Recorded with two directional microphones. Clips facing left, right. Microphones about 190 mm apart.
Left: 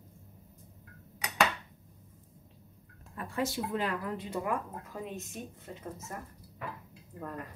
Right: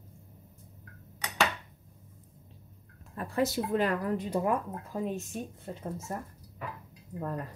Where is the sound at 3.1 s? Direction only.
35° right (ahead or behind).